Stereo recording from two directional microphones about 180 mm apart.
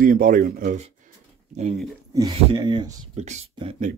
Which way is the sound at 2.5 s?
25° right (ahead or behind).